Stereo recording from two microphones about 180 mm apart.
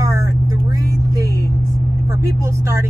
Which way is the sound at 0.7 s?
20° right (ahead or behind).